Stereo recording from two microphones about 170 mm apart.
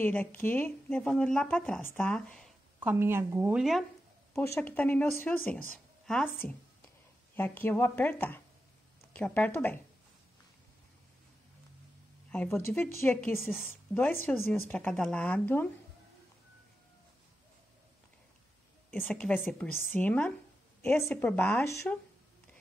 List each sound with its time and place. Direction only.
0.0 s speech: 10° left (ahead or behind)
2.8 s speech: 10° right (ahead or behind)
3.5 s a woman's voice: centre (ahead or behind)
4.6 s speech: 10° left (ahead or behind)
12.3 s speech: 10° left (ahead or behind)
13.4 s a woman's voice: centre (ahead or behind)
13.7 s speech: 10° left (ahead or behind)
18.9 s speech: 10° left (ahead or behind)